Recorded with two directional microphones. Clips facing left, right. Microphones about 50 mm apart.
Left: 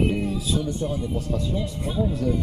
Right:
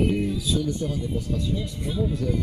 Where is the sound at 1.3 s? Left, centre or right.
Left.